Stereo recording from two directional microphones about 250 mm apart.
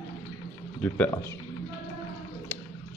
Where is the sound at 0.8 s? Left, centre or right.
Centre.